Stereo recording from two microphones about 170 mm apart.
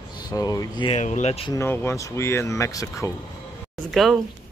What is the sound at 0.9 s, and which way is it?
Speech, 40° left (ahead or behind).